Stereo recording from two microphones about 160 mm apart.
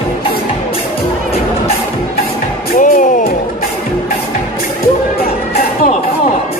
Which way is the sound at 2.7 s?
55° left (ahead or behind).